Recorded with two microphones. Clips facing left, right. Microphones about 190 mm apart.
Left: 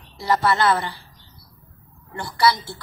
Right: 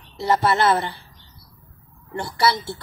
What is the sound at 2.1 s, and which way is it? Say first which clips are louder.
Speech: left 1 dB; 25° right (ahead or behind).